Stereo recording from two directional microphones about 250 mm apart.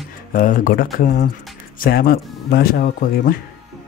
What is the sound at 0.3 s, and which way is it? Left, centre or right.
Speech, left.